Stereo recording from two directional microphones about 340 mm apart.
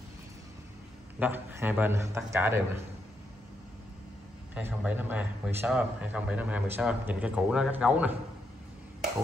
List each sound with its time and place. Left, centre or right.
1.2 s a man's voice: centre
4.6 s a man's voice: centre